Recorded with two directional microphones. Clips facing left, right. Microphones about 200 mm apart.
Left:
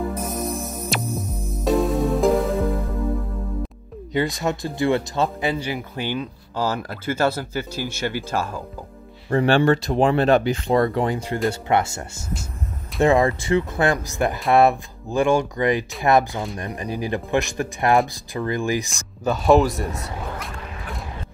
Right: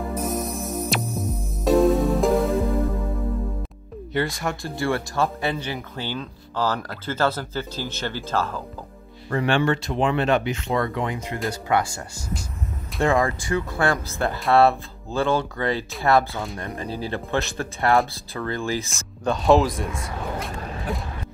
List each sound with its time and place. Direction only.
0.1 s music: centre (ahead or behind)
4.1 s speech: 20° left (ahead or behind)
9.3 s speech: 30° left (ahead or behind)
13.0 s speech: 20° left (ahead or behind)
18.9 s speech: centre (ahead or behind)
20.6 s a sound: 35° right (ahead or behind)